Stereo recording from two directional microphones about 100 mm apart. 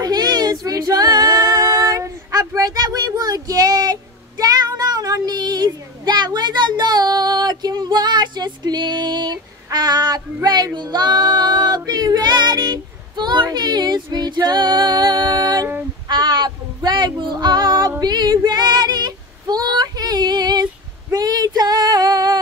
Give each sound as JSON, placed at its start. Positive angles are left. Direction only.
{"t": 0.0, "sound": "female singing", "side_deg": -45}
{"t": 16.1, "sound": "a sound", "side_deg": -45}
{"t": 18.0, "sound": "female singing", "side_deg": -45}